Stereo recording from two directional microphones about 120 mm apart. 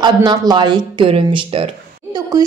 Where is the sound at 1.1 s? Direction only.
50° right (ahead or behind).